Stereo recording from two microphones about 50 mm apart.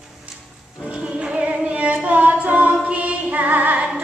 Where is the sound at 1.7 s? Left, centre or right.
Right.